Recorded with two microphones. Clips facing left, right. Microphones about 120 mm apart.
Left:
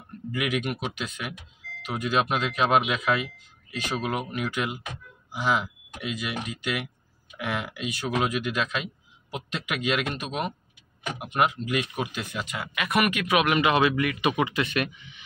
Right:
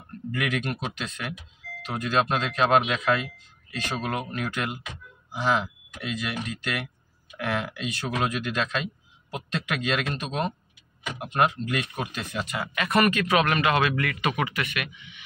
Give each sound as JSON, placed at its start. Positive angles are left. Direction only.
{"t": 0.3, "sound": "speech", "side_deg": 5}